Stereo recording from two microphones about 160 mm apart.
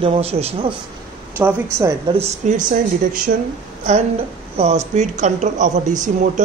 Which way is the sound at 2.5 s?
55° right (ahead or behind).